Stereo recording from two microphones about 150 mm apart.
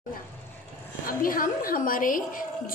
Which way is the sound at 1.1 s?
70° left (ahead or behind).